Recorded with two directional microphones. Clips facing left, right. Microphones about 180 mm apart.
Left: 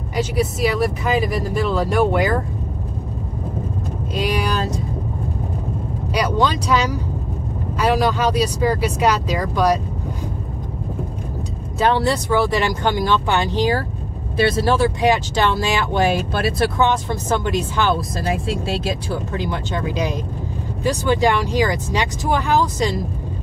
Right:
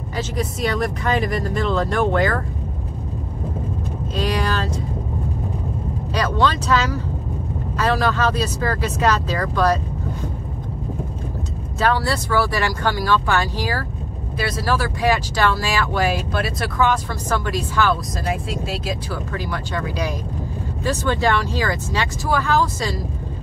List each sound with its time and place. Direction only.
0.1 s speech: 10° left (ahead or behind)
4.1 s speech: 10° left (ahead or behind)
6.1 s speech: 15° left (ahead or behind)
11.8 s speech: 20° left (ahead or behind)